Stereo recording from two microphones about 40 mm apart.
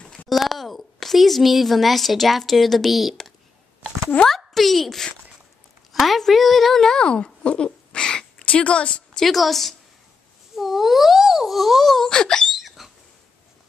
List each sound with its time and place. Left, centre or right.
0.3 s a woman's voice: centre
4.3 s speech: centre
7.1 s a sound: left
8.5 s speech: left
9.2 s speech: centre
12.1 s speech: centre
12.5 s hiccup: centre